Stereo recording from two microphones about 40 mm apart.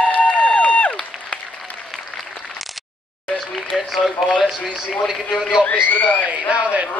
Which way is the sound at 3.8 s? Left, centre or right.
Centre.